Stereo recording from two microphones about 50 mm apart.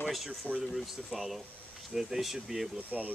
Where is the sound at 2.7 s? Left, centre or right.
Right.